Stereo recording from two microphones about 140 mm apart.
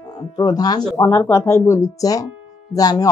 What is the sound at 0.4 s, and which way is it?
Speech, 30° left (ahead or behind).